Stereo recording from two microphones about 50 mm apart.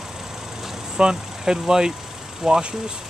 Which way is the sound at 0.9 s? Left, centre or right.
Centre.